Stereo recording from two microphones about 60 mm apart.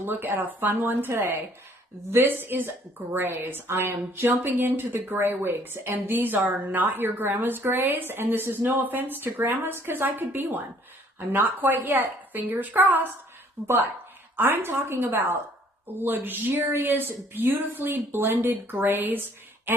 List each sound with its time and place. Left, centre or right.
0.0 s a woman's voice: right
14.3 s a woman's voice: right